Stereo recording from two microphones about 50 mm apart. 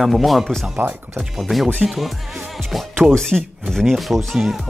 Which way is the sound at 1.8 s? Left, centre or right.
Centre.